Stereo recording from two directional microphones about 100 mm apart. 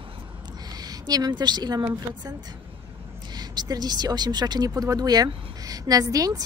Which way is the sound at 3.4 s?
45° right (ahead or behind).